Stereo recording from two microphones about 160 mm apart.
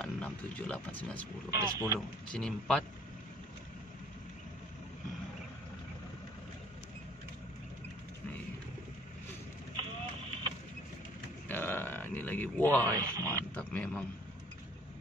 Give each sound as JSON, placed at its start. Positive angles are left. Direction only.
{"t": 0.0, "sound": "speech", "side_deg": 5}
{"t": 1.5, "sound": "speech", "side_deg": -20}
{"t": 2.3, "sound": "speech", "side_deg": 5}
{"t": 11.4, "sound": "grunt", "side_deg": 10}
{"t": 12.8, "sound": "speech", "side_deg": -20}
{"t": 13.6, "sound": "a man's voice", "side_deg": 10}